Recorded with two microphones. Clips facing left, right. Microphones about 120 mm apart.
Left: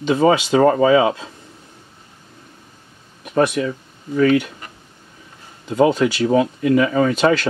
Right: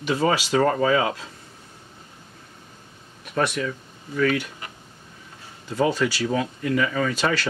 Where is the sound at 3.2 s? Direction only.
25° left (ahead or behind).